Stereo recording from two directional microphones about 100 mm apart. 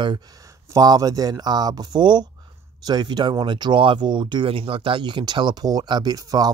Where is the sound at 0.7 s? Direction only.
40° right (ahead or behind).